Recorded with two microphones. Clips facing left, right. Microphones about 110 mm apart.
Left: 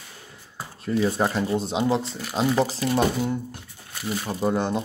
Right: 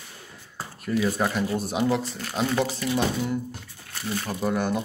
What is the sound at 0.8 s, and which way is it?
Speech, 30° left (ahead or behind).